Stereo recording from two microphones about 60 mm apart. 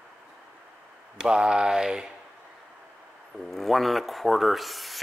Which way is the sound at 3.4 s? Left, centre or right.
Centre.